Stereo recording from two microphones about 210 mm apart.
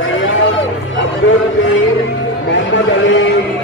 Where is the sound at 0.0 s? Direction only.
65° left (ahead or behind).